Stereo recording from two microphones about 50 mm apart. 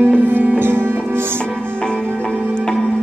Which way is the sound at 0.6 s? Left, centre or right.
Right.